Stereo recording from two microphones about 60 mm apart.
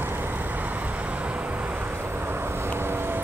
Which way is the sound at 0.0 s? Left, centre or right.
Right.